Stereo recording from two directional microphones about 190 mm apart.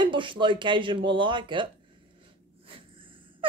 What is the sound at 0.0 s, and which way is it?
Speech, 25° right (ahead or behind).